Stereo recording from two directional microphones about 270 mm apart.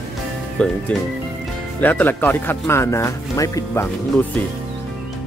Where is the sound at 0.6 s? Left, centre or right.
Centre.